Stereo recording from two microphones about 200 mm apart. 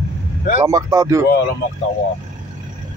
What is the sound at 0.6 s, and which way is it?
Speech, 20° right (ahead or behind).